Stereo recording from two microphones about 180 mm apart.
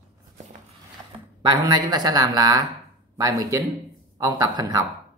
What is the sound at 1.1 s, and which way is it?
Speech, 25° right (ahead or behind).